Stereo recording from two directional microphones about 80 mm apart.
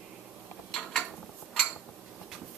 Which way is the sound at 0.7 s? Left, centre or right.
Centre.